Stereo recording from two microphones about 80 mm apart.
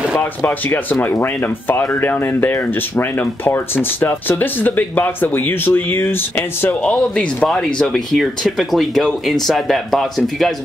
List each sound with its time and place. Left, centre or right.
0.2 s speech: left
6.8 s speech: centre